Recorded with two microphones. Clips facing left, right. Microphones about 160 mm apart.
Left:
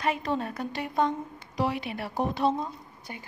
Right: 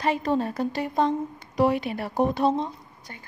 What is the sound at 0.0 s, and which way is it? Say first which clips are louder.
A woman's voice: right 4 dB; 35° right (ahead or behind).